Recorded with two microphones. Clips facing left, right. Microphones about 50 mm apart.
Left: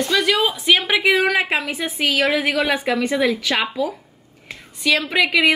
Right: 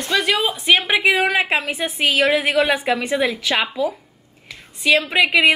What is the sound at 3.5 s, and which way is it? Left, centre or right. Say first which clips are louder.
A woman's voice: right 1 dB; centre.